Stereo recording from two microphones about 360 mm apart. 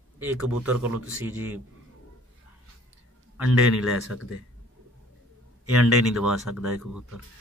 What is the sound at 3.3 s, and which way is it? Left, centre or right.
Speech, centre.